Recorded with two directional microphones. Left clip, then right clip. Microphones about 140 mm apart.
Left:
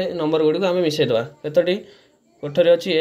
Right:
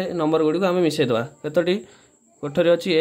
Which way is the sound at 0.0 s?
40° right (ahead or behind).